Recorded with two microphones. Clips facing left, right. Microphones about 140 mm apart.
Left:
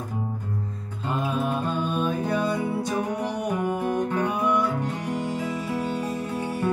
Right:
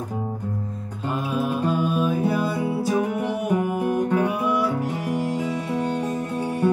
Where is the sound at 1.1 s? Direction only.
5° right (ahead or behind).